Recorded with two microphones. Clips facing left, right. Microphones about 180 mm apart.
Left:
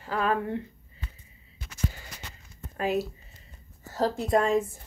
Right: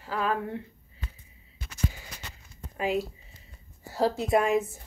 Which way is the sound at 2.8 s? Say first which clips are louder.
Left 1 dB; 10° right (ahead or behind).